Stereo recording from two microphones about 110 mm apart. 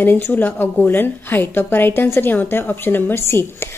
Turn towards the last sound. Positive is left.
turn(degrees=20)  # may be behind; listen again after turning